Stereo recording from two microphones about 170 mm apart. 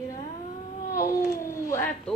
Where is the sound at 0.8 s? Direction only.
50° left (ahead or behind).